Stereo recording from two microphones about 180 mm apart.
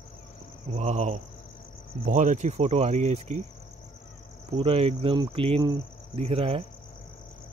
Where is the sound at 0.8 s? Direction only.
35° right (ahead or behind).